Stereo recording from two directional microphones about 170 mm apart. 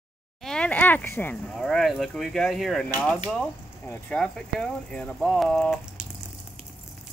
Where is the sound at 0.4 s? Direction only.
5° left (ahead or behind).